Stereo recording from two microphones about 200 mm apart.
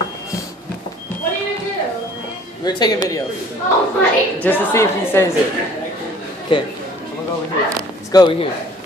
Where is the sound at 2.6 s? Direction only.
20° left (ahead or behind).